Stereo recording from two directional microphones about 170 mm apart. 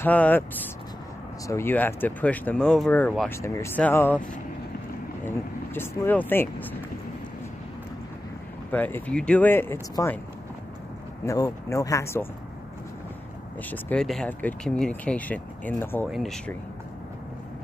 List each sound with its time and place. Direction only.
0.0 s speech: 10° left (ahead or behind)
1.5 s speech: 15° left (ahead or behind)
5.8 s speech: 10° left (ahead or behind)
8.7 s speech: 10° left (ahead or behind)
11.2 s speech: 20° left (ahead or behind)
13.7 s speech: 5° left (ahead or behind)
16.1 s speech: centre (ahead or behind)